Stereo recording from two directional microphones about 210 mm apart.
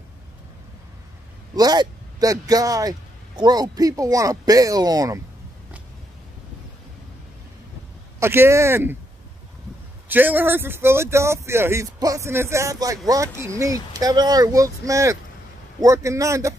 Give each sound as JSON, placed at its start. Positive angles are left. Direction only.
{"t": 1.5, "sound": "speech", "side_deg": -20}
{"t": 8.2, "sound": "speech", "side_deg": -10}
{"t": 10.0, "sound": "speech", "side_deg": -10}